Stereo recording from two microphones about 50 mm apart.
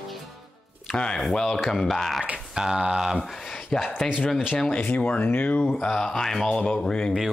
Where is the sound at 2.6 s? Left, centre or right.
Centre.